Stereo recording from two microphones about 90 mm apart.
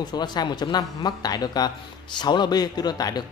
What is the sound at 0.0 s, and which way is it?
Speech, 50° left (ahead or behind).